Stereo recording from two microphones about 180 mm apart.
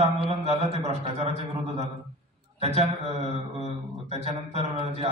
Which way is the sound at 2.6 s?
35° right (ahead or behind).